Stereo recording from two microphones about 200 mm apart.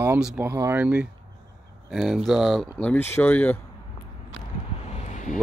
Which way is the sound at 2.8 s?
10° left (ahead or behind).